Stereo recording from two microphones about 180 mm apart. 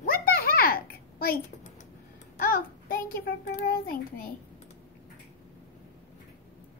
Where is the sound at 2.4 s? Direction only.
55° left (ahead or behind).